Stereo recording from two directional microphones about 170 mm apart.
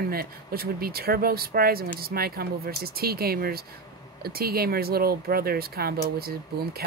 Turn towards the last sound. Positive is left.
turn(degrees=-65)  # may be behind; listen again after turning